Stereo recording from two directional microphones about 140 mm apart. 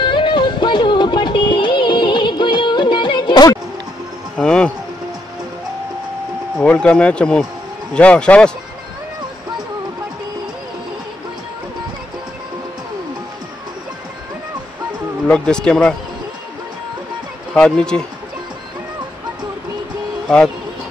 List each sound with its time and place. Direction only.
0.0 s music: 35° left (ahead or behind)
4.4 s a sound: 5° left (ahead or behind)
6.6 s speech: 10° left (ahead or behind)
15.2 s speech: 5° left (ahead or behind)
17.6 s speech: 5° left (ahead or behind)
20.2 s speech: 5° left (ahead or behind)